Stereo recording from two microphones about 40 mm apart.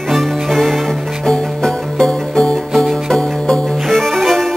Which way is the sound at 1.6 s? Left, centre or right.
Centre.